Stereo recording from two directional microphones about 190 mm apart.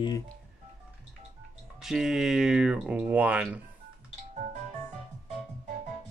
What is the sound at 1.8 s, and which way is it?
Speech, 5° right (ahead or behind).